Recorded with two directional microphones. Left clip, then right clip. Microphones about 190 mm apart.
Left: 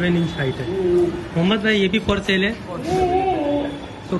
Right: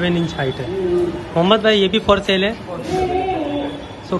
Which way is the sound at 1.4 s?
15° right (ahead or behind).